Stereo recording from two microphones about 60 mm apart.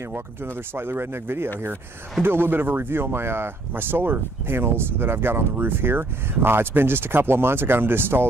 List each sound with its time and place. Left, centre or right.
0.1 s speech: right